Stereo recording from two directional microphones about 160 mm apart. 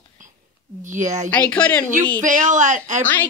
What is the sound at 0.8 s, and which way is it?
Speech, 50° right (ahead or behind).